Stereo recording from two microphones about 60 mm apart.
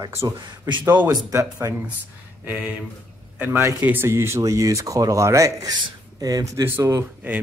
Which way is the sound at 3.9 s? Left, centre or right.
Right.